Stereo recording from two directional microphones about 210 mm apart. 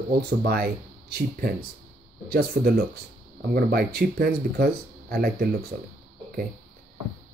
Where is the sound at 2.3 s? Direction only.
45° right (ahead or behind).